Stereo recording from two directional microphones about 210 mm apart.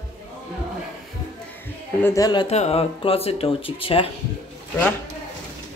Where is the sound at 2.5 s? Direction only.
30° left (ahead or behind).